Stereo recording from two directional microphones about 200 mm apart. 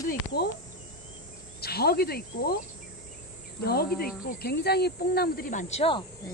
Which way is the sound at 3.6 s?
50° left (ahead or behind).